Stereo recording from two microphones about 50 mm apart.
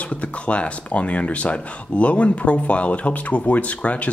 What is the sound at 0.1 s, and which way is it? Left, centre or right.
Speech, left.